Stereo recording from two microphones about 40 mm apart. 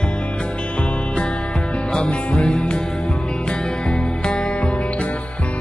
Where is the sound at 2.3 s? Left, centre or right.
Left.